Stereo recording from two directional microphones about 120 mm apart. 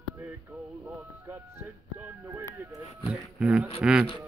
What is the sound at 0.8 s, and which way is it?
Music, 15° right (ahead or behind).